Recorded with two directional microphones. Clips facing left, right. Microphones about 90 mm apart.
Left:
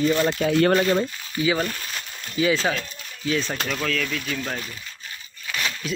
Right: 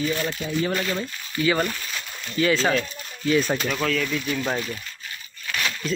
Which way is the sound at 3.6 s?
5° right (ahead or behind).